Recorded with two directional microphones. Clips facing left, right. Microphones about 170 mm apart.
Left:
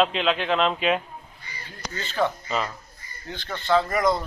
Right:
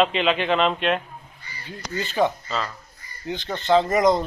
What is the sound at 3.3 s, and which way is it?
Speech, 20° right (ahead or behind).